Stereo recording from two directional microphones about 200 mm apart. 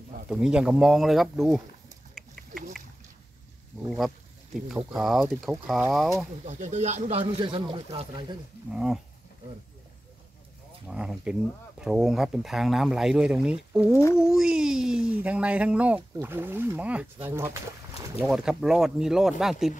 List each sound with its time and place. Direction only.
0.3 s speech: 5° right (ahead or behind)
3.8 s speech: 5° left (ahead or behind)
6.4 s speech: 35° right (ahead or behind)
8.7 s speech: 5° right (ahead or behind)
10.9 s speech: 5° right (ahead or behind)